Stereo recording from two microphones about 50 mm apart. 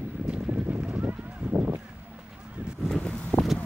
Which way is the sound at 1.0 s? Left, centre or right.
Right.